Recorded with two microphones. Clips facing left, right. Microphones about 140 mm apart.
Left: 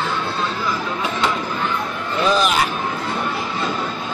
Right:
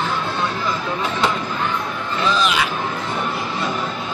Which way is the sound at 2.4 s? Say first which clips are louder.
Left 1 dB; 45° left (ahead or behind).